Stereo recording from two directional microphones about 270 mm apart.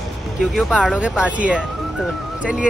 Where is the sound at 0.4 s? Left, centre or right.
Centre.